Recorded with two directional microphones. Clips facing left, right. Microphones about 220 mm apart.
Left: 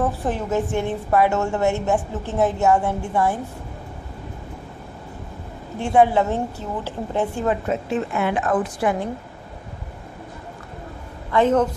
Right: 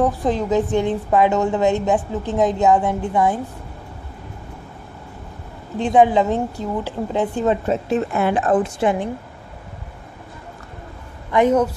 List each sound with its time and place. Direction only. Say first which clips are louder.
0.2 s a woman's voice: right 4 dB; 15° right (ahead or behind)
5.8 s a woman's voice: right 2 dB; 15° right (ahead or behind)
7.6 s a woman's voice: right 3 dB; 35° right (ahead or behind)
11.3 s a woman's voice: right 2 dB; 10° right (ahead or behind)